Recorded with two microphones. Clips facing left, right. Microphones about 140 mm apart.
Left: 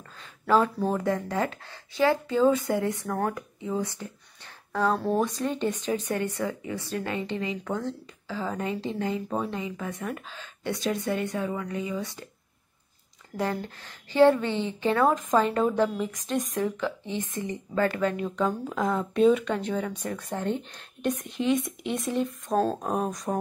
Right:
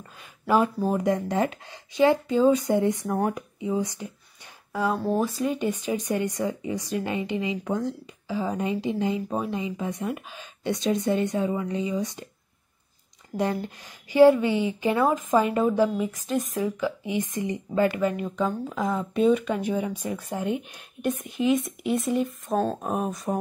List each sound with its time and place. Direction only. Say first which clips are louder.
0.5 s speech: right 1 dB; 10° right (ahead or behind)
13.4 s speech: right 3 dB; 15° right (ahead or behind)